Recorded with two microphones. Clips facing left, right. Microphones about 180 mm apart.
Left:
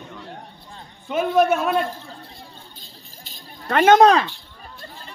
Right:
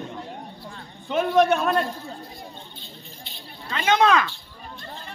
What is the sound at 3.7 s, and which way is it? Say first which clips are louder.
Speech: left 9 dB; 60° left (ahead or behind).